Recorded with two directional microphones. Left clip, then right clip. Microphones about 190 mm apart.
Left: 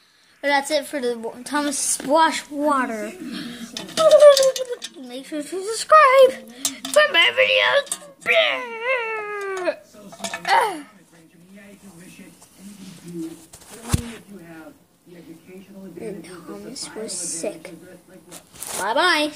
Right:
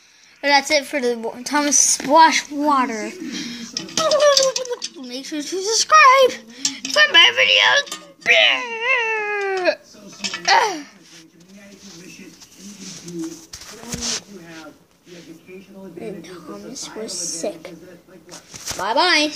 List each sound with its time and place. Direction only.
0.4 s a woman's voice: 5° right (ahead or behind)
3.4 s a sound: 15° right (ahead or behind)
5.7 s a woman's voice: 10° right (ahead or behind)
16.0 s a woman's voice: 10° right (ahead or behind)
17.1 s a woman's voice: 10° left (ahead or behind)
17.4 s a woman's voice: 10° right (ahead or behind)
18.9 s speech: 5° right (ahead or behind)